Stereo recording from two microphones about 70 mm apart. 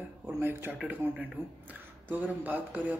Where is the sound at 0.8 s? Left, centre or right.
Right.